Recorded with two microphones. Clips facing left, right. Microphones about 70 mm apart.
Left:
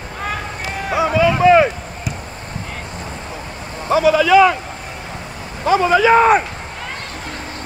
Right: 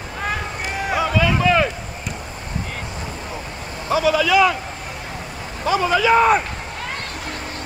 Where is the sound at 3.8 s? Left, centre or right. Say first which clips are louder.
Left 4 dB; left.